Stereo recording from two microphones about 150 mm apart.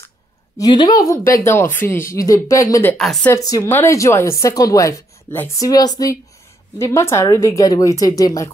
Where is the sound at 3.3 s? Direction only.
25° left (ahead or behind).